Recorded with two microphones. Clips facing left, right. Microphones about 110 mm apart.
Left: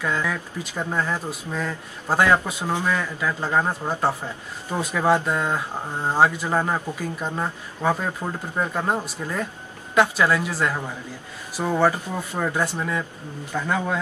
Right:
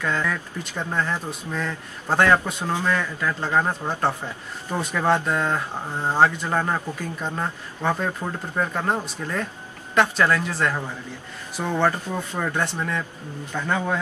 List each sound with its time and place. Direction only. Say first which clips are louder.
0.0 s speech: even; 5° left (ahead or behind)